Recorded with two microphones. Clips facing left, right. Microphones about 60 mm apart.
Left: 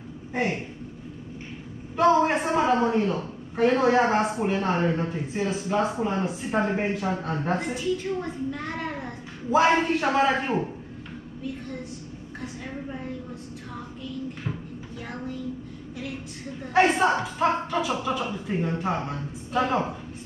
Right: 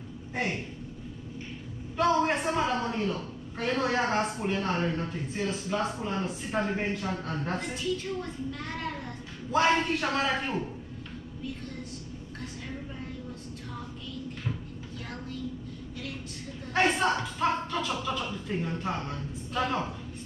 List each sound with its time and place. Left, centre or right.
0.3 s speech: centre
2.0 s a woman's voice: centre
12.4 s a woman's voice: left
15.0 s a woman's voice: centre
16.6 s a woman's voice: centre